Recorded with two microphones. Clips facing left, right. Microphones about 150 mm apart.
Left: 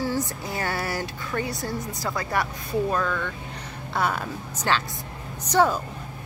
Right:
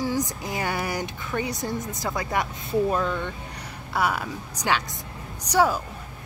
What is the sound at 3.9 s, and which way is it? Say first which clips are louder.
Speech: right 1 dB; 10° right (ahead or behind).